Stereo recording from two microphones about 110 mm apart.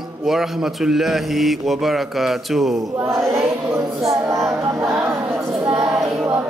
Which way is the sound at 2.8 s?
25° right (ahead or behind).